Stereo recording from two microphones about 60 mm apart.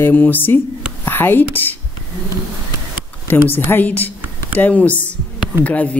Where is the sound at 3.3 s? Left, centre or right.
Left.